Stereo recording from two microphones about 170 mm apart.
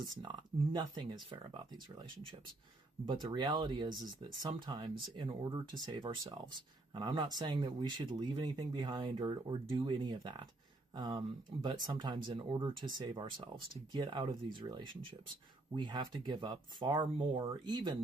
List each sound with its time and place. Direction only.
0.2 s speech: 25° right (ahead or behind)
3.1 s speech: 30° right (ahead or behind)